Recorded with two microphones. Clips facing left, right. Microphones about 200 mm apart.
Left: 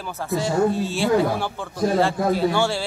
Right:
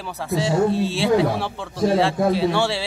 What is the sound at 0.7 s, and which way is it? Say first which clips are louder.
Speech: right 2 dB; 30° right (ahead or behind).